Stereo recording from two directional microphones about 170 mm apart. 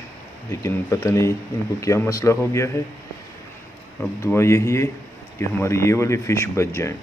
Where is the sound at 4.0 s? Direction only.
15° left (ahead or behind).